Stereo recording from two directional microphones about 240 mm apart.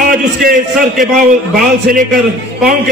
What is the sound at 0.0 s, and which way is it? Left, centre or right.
A man's voice, right.